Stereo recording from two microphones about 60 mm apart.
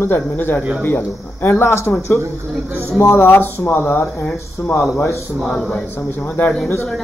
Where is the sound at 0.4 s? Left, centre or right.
Left.